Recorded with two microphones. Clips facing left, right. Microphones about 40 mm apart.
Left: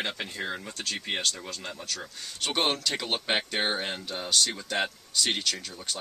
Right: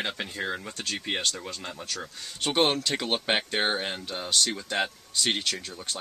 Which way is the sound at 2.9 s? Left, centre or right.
Centre.